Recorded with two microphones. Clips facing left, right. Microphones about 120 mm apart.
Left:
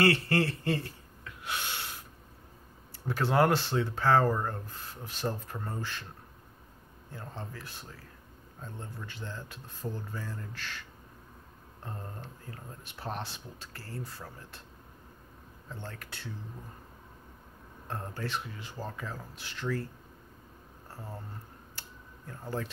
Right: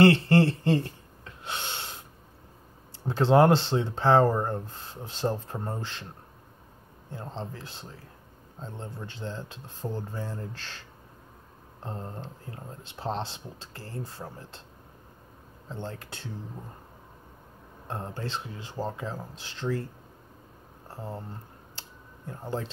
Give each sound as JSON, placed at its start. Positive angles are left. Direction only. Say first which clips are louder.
{"t": 0.0, "sound": "a sound", "louder": "right 7 dB", "side_deg": -25}
{"t": 3.1, "sound": "speech", "louder": "right 6 dB", "side_deg": -25}
{"t": 7.1, "sound": "speech", "louder": "right 5 dB", "side_deg": -25}
{"t": 15.7, "sound": "speech", "louder": "right 6 dB", "side_deg": -25}
{"t": 17.8, "sound": "speech", "louder": "right 2 dB", "side_deg": -25}
{"t": 20.9, "sound": "speech", "louder": "right 6 dB", "side_deg": -25}
{"t": 21.7, "sound": "a sound", "louder": "right 3 dB", "side_deg": -25}